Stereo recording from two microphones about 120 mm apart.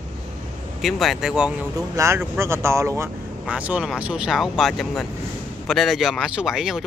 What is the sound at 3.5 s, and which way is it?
Speech, 10° right (ahead or behind).